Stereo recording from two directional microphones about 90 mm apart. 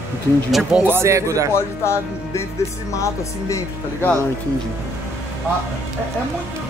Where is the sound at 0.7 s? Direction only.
25° right (ahead or behind).